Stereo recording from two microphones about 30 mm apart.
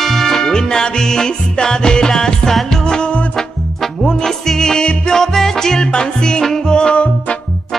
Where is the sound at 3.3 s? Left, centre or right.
Centre.